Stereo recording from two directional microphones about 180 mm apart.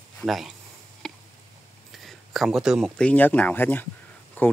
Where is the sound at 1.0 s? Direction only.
5° left (ahead or behind).